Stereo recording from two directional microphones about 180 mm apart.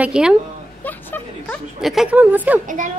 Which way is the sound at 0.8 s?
10° left (ahead or behind).